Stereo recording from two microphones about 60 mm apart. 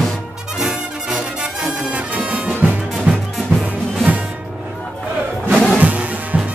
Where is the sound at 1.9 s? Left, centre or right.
Right.